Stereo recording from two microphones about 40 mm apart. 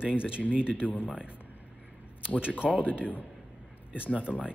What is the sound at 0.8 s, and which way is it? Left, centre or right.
Speech, left.